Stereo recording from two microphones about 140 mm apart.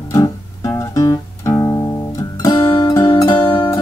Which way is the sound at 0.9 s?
25° left (ahead or behind).